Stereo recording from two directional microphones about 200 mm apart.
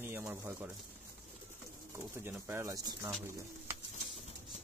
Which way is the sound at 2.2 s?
10° right (ahead or behind).